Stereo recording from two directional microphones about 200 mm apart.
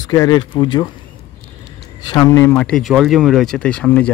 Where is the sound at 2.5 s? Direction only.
5° left (ahead or behind).